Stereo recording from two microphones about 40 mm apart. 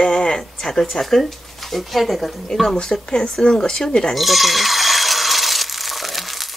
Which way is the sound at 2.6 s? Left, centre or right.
Centre.